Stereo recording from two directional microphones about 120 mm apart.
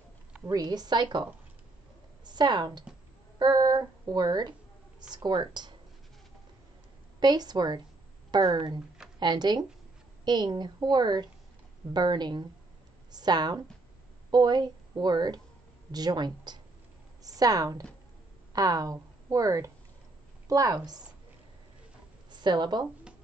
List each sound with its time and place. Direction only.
0.5 s speech: 35° right (ahead or behind)
2.2 s speech: 35° right (ahead or behind)
7.2 s a woman's voice: 35° right (ahead or behind)
22.3 s speech: 40° right (ahead or behind)